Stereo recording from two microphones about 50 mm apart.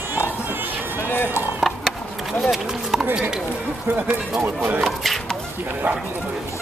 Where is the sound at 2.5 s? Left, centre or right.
Centre.